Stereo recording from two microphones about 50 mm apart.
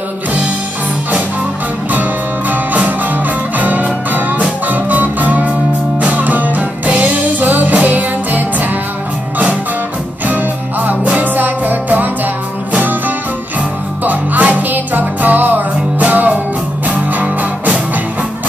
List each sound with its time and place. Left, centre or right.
2.5 s music: right
10.2 s music: right
14.0 s music: right